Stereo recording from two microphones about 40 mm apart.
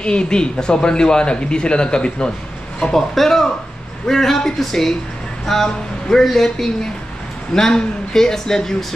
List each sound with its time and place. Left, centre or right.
0.0 s speech: left
2.9 s speech: centre